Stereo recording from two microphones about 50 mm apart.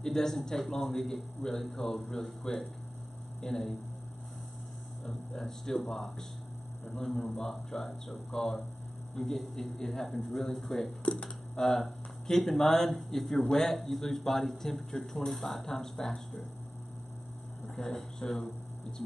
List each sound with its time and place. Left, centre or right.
0.0 s speech: centre
5.3 s a man's voice: centre
11.1 s speech: left
17.7 s speech: centre